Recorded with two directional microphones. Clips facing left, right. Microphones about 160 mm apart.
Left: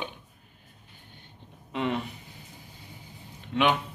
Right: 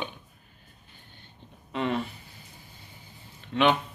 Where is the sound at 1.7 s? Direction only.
15° left (ahead or behind).